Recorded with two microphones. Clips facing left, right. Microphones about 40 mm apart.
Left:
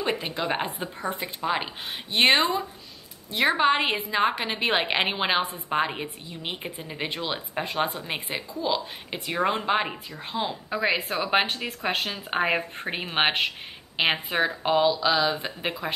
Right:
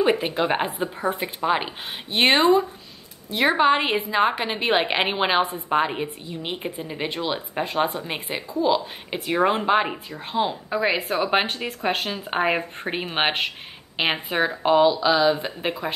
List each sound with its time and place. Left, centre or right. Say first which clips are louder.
0.0 s a woman's voice: right 7 dB; centre
0.7 s speech: right 6 dB; centre
1.1 s a woman's voice: right 4 dB; centre